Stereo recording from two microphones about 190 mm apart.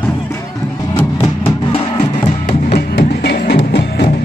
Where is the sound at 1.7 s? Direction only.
30° left (ahead or behind).